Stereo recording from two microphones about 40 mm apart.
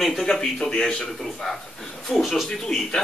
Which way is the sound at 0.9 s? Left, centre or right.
Centre.